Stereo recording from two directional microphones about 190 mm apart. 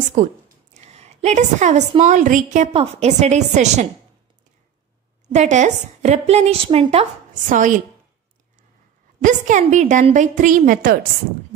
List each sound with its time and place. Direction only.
0.2 s a woman's voice: 40° right (ahead or behind)
5.3 s a woman's voice: 35° right (ahead or behind)
7.4 s a woman's voice: 40° right (ahead or behind)
9.2 s a woman's voice: 40° right (ahead or behind)